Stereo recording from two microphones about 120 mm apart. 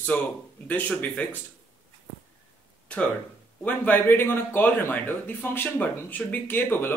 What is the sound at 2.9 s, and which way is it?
A man's voice, 10° left (ahead or behind).